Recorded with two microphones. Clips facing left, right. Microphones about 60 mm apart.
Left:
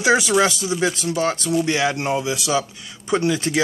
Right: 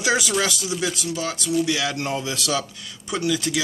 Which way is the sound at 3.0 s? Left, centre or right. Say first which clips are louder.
Left 4 dB; left.